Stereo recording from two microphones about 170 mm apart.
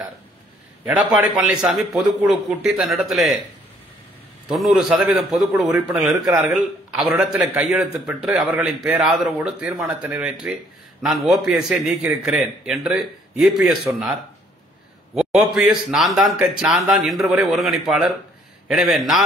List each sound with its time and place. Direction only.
0.8 s a man's voice: 5° right (ahead or behind)
4.5 s a man's voice: centre (ahead or behind)
13.9 s speech: 15° right (ahead or behind)
15.1 s a man's voice: 5° right (ahead or behind)